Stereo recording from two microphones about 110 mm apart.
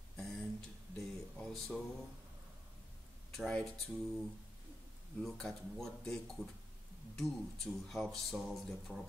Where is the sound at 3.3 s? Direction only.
5° left (ahead or behind).